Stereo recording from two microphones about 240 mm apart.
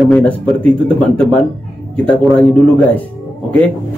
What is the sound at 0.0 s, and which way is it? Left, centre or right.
Speech, centre.